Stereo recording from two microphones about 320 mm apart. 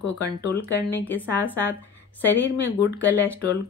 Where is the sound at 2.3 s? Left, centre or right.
Left.